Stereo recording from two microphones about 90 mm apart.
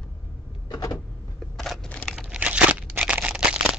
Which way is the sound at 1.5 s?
5° left (ahead or behind).